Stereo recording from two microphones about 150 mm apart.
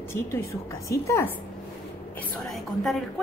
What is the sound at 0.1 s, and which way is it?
A woman's voice, 15° left (ahead or behind).